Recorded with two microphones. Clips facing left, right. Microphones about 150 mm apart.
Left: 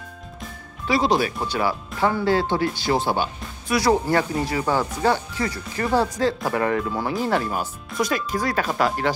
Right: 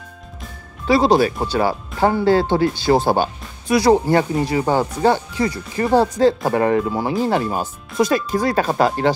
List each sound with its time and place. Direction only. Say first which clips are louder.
0.8 s speech: right 6 dB; 35° right (ahead or behind)
2.9 s speech: right 6 dB; 40° right (ahead or behind)
3.7 s speech: right 5 dB; 25° right (ahead or behind)
6.8 s speech: right 5 dB; 10° right (ahead or behind); by 9.1 s 30° right (ahead or behind)